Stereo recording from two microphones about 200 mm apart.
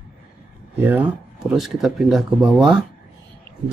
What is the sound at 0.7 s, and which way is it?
Speech, 10° right (ahead or behind).